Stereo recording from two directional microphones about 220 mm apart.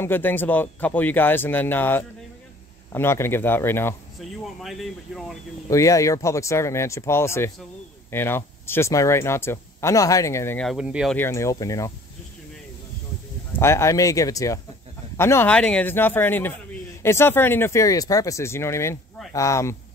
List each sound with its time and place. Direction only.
0.0 s speech: 10° left (ahead or behind)
4.2 s speech: centre (ahead or behind)
5.7 s speech: 15° left (ahead or behind); by 11.1 s 5° right (ahead or behind)
11.1 s speech: 10° left (ahead or behind)
13.6 s speech: 10° left (ahead or behind)